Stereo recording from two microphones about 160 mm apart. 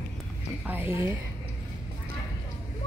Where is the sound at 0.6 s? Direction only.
10° right (ahead or behind).